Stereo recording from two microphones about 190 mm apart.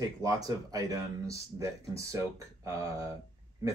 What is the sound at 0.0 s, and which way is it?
Speech, 20° right (ahead or behind).